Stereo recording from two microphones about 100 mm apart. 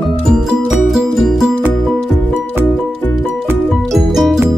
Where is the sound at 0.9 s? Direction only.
Centre (ahead or behind).